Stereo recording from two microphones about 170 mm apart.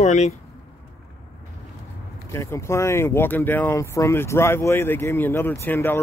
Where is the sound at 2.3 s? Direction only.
15° left (ahead or behind).